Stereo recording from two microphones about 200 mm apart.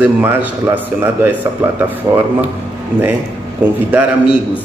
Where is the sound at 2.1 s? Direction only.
20° right (ahead or behind).